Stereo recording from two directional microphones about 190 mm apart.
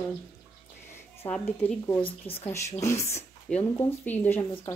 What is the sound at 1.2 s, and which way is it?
Speech, 10° left (ahead or behind).